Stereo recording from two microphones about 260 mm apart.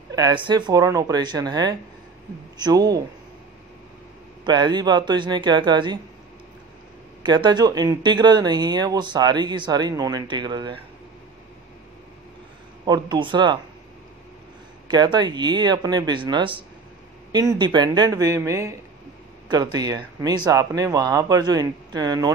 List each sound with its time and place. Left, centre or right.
0.1 s a man's voice: centre
4.5 s speech: centre
7.2 s speech: centre
12.8 s speech: centre
14.9 s speech: centre